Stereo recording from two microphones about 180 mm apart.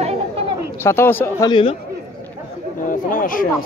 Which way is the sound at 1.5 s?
30° left (ahead or behind).